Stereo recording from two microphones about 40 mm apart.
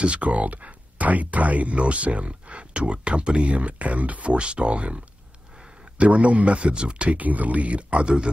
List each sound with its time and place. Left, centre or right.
0.0 s speech: right
5.9 s speech: right